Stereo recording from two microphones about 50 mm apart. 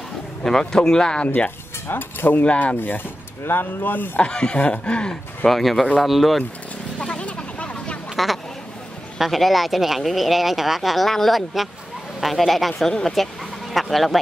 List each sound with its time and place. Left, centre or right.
0.4 s speech: centre
1.9 s speech: left
2.4 s speech: left
4.2 s speech: centre
5.5 s speech: centre
7.0 s a sound: left
9.2 s speech: centre